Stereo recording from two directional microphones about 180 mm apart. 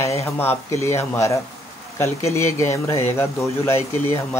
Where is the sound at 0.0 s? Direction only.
15° left (ahead or behind).